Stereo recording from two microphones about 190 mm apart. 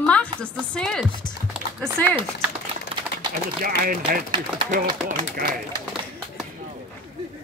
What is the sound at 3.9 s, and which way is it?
Speech, 50° right (ahead or behind).